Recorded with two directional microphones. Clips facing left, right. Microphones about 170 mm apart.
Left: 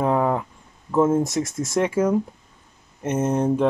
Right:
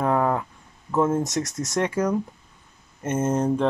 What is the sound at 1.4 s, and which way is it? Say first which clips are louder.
Speech: left 3 dB; 40° right (ahead or behind).